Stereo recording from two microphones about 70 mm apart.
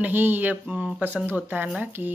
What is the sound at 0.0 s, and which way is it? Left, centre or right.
Speech, right.